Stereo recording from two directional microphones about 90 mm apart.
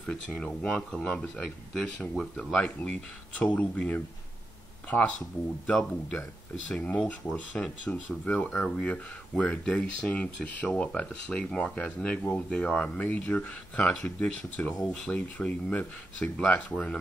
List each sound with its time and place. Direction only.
0.0 s speech: 10° left (ahead or behind)